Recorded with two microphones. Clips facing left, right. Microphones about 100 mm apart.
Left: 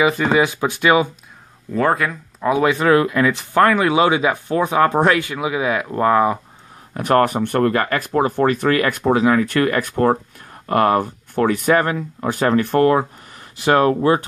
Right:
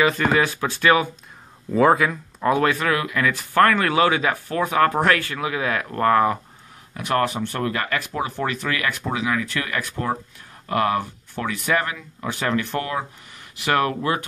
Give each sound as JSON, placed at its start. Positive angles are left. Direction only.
{"t": 0.0, "sound": "speech", "side_deg": 15}
{"t": 1.7, "sound": "speech", "side_deg": -5}
{"t": 2.7, "sound": "speech", "side_deg": 30}
{"t": 6.9, "sound": "speech", "side_deg": 45}